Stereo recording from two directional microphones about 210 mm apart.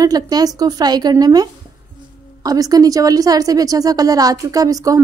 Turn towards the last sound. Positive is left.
turn(degrees=-15)  # may be behind; listen again after turning